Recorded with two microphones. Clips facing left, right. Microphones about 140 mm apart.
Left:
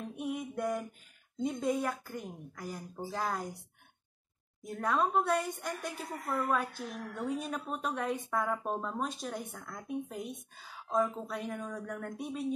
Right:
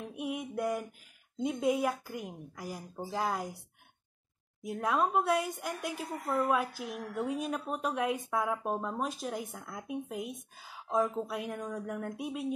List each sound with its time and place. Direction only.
0.0 s a woman's voice: 5° right (ahead or behind)
3.3 s a woman's voice: 5° right (ahead or behind)
4.6 s a woman's voice: 5° right (ahead or behind)